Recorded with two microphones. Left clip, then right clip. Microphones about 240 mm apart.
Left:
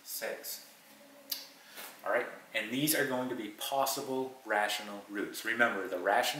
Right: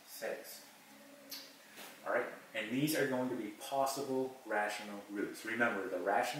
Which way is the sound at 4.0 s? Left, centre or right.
Centre.